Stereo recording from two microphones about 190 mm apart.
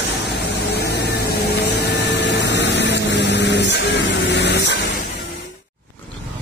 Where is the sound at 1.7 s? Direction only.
65° left (ahead or behind).